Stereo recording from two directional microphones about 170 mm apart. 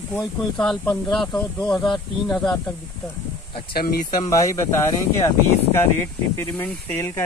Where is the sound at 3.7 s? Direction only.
60° left (ahead or behind).